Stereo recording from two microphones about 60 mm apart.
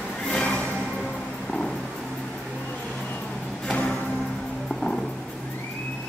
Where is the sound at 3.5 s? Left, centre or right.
Centre.